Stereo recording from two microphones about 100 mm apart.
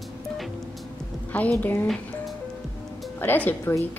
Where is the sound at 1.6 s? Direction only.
20° left (ahead or behind).